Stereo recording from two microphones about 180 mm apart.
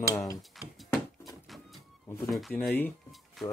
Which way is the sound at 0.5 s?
Centre (ahead or behind).